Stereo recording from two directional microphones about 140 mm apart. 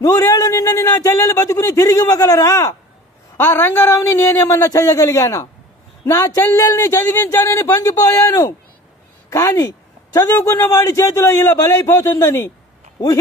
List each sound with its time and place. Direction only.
0.0 s a man's voice: 25° left (ahead or behind)